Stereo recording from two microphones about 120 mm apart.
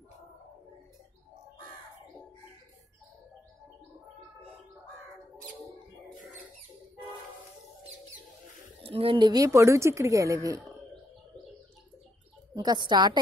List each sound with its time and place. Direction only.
8.8 s a woman's voice: 50° right (ahead or behind); by 10.6 s 25° right (ahead or behind)
12.6 s a woman's voice: 35° right (ahead or behind)